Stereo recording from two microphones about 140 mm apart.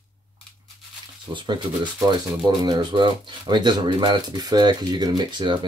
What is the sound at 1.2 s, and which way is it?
Speech, 35° right (ahead or behind).